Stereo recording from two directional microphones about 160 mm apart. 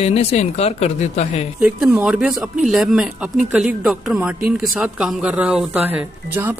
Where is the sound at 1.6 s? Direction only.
5° right (ahead or behind).